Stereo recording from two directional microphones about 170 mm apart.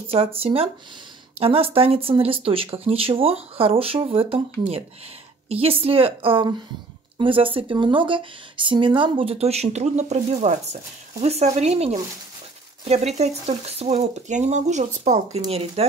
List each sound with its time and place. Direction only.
0.1 s speech: 35° right (ahead or behind)